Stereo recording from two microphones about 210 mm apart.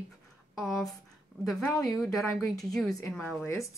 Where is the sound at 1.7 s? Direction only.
15° left (ahead or behind).